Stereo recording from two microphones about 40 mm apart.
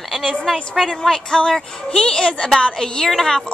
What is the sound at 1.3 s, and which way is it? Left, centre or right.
A woman's voice, left.